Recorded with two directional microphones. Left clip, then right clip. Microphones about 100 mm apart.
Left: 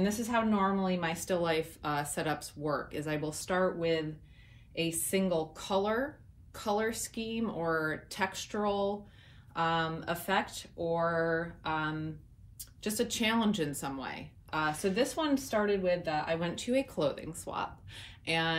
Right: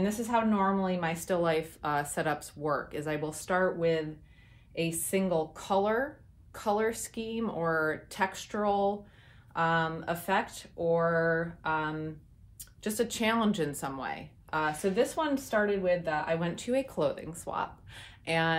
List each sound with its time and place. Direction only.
0.0 s a woman's voice: 30° right (ahead or behind)
16.1 s speech: 20° right (ahead or behind)
16.3 s speech: 35° right (ahead or behind)